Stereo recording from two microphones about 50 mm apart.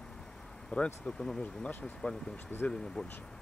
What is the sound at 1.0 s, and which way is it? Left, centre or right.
Speech, centre.